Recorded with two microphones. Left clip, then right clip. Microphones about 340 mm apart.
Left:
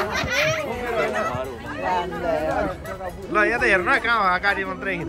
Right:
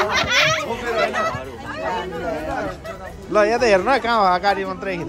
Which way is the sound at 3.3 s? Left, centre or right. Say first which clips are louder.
Right 3 dB; centre.